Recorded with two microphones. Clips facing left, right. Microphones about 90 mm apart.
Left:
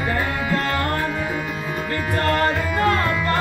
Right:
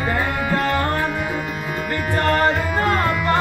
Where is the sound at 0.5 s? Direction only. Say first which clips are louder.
Right 3 dB; 15° right (ahead or behind).